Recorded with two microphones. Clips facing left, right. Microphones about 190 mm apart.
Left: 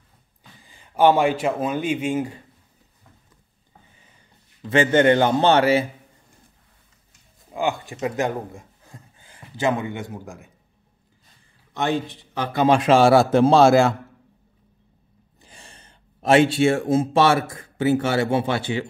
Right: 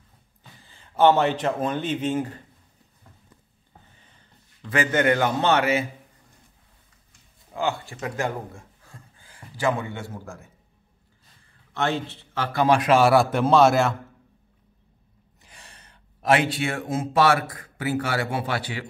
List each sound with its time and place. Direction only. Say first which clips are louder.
0.7 s speech: left 1 dB; 15° left (ahead or behind)
4.6 s a man's voice: left 5 dB; 30° left (ahead or behind)
7.5 s speech: left 2 dB; 15° left (ahead or behind)
11.7 s a man's voice: left 2 dB; 15° left (ahead or behind)
15.4 s speech: left 3 dB; 30° left (ahead or behind)